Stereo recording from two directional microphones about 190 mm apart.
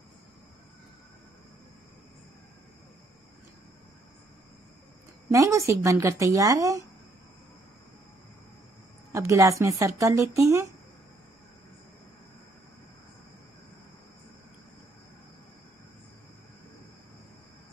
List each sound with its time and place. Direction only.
5.3 s speech: 15° right (ahead or behind)
9.1 s speech: 15° right (ahead or behind)